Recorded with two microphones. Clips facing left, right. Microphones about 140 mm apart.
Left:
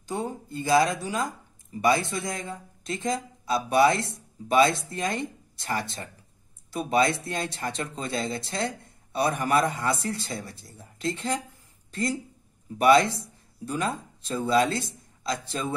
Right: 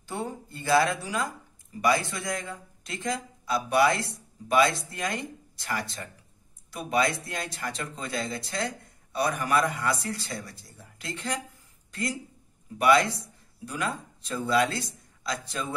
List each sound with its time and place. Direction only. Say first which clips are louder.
0.0 s speech: left 3 dB; 15° left (ahead or behind)